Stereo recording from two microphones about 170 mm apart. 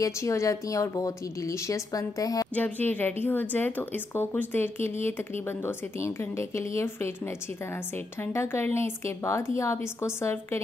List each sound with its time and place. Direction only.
0.0 s a woman's voice: 20° left (ahead or behind)
8.2 s a woman's voice: 15° left (ahead or behind)